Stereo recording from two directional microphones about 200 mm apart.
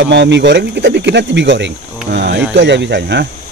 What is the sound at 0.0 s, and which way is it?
Speech, 60° right (ahead or behind).